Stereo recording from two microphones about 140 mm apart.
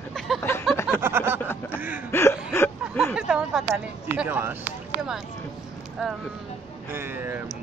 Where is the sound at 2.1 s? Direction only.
15° left (ahead or behind).